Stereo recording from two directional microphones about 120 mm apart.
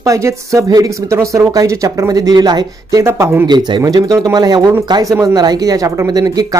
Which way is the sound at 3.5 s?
35° right (ahead or behind).